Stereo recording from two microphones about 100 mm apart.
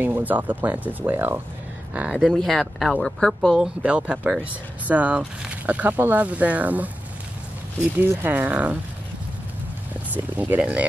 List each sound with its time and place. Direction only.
0.0 s speech: 20° right (ahead or behind)
2.1 s speech: 5° left (ahead or behind)
3.6 s speech: 10° right (ahead or behind)
10.1 s speech: 15° right (ahead or behind)